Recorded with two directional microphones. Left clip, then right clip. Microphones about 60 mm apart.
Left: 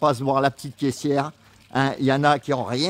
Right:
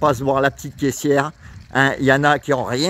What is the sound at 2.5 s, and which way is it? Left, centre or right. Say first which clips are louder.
Speech: right 4 dB; right.